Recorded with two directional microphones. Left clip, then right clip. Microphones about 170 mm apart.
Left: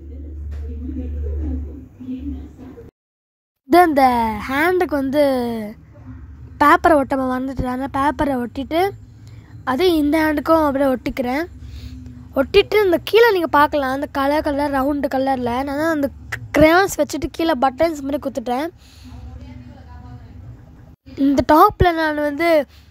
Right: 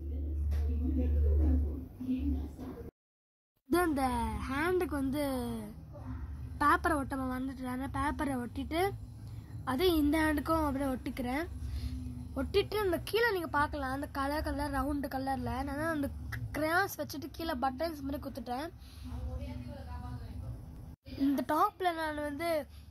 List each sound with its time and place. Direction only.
3.7 s a woman's voice: 50° left (ahead or behind)
21.3 s speech: 45° left (ahead or behind)